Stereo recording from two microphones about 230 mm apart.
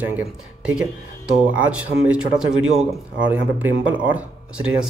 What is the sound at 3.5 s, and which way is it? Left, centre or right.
Speech, centre.